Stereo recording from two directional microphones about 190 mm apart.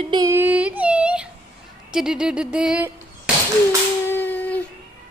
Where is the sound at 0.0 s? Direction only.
20° right (ahead or behind); by 2.9 s 5° right (ahead or behind).